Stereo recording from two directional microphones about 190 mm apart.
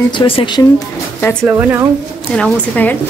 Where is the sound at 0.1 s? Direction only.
25° left (ahead or behind).